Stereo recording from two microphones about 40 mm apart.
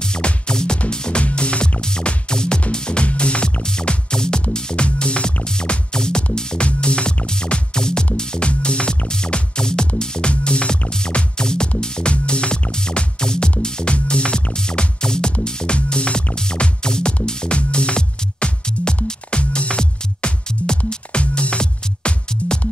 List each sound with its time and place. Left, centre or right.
0.0 s music: left